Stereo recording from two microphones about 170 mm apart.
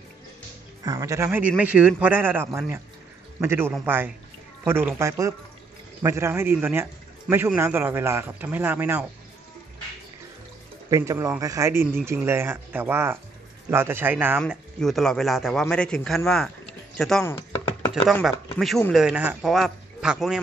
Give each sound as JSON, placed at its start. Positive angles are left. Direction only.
{"t": 0.8, "sound": "a man's voice", "side_deg": -15}
{"t": 10.9, "sound": "a man's voice", "side_deg": -20}
{"t": 14.5, "sound": "a man's voice", "side_deg": 0}
{"t": 17.3, "sound": "chopping", "side_deg": 25}
{"t": 18.6, "sound": "a man's voice", "side_deg": 0}